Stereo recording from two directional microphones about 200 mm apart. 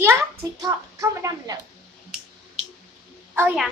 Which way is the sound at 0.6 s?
15° right (ahead or behind).